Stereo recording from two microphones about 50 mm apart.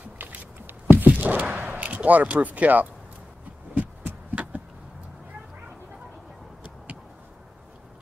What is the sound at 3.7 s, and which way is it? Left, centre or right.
Heart sounds, right.